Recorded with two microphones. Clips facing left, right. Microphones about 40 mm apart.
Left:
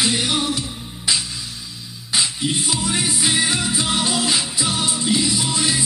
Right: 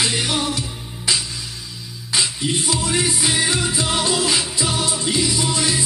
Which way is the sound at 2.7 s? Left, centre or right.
Left.